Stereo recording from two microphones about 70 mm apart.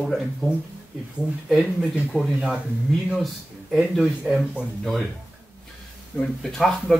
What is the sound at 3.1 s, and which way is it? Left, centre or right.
Speech, centre.